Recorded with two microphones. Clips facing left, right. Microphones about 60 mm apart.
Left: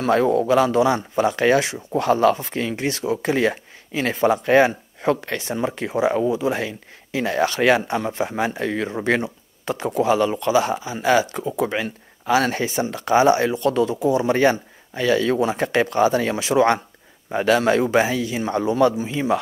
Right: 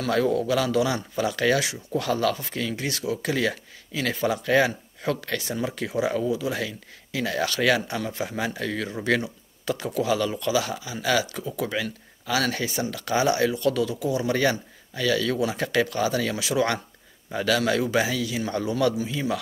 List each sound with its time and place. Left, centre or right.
0.0 s speech: left